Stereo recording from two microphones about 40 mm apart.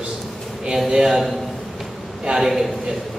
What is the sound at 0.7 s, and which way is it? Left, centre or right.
Speech, centre.